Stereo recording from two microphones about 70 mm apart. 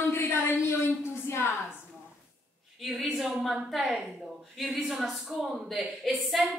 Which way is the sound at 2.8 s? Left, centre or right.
Centre.